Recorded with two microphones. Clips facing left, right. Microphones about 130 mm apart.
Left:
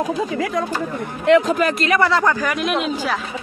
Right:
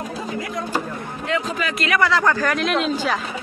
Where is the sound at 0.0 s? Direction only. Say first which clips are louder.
Left 7 dB; 90° left.